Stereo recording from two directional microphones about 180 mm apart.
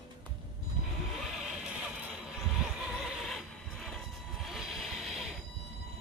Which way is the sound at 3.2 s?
Centre (ahead or behind).